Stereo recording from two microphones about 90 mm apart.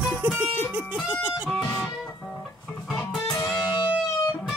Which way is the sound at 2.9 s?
5° left (ahead or behind).